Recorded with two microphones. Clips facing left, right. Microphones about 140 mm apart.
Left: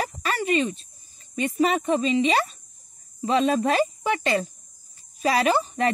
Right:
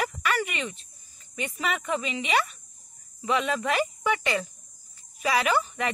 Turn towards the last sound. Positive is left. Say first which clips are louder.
# left 4 dB
turn(degrees=30)  # may be behind; listen again after turning